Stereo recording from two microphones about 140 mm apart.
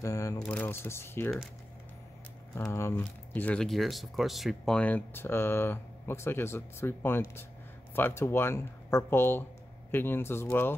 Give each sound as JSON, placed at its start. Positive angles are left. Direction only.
{"t": 0.0, "sound": "speech", "side_deg": 20}
{"t": 2.5, "sound": "speech", "side_deg": 15}